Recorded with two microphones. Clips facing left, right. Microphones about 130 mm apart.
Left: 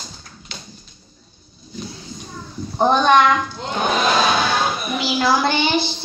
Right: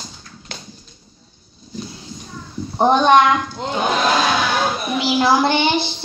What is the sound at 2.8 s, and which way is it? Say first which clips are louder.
Speech: right 2 dB; 20° right (ahead or behind).